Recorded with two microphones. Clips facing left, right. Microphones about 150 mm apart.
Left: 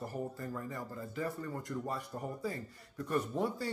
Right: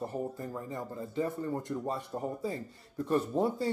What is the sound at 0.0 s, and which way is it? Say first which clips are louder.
Speech: right 4 dB; 25° right (ahead or behind).